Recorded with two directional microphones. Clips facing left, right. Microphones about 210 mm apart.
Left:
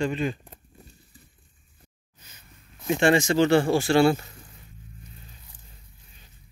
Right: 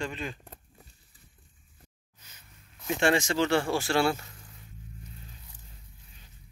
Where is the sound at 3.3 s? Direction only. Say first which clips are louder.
Left 6 dB; 30° left (ahead or behind).